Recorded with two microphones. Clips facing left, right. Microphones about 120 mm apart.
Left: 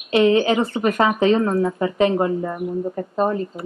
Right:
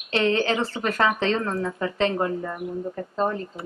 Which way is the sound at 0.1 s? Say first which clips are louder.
Left 6 dB; 15° left (ahead or behind).